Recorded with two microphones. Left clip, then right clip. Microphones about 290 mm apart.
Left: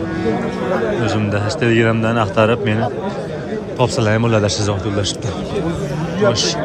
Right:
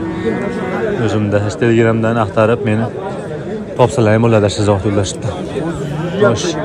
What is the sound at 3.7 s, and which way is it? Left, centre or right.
Speech, centre.